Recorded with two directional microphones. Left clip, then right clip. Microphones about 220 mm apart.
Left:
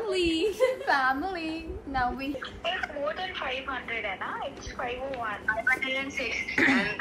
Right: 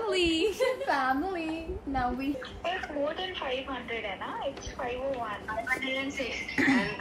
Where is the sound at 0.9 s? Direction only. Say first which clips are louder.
Left 2 dB; 30° right (ahead or behind).